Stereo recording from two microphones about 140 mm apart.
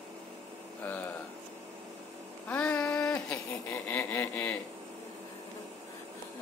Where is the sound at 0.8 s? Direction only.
10° left (ahead or behind).